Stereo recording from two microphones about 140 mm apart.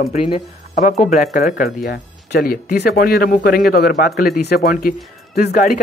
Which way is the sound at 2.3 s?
90° left.